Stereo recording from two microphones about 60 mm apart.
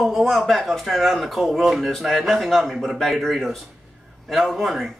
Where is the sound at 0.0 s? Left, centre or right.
Centre.